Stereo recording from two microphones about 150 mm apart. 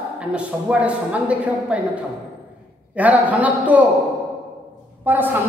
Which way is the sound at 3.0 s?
10° right (ahead or behind).